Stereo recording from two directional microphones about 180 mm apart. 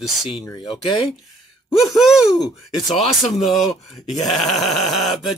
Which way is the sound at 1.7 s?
Centre (ahead or behind).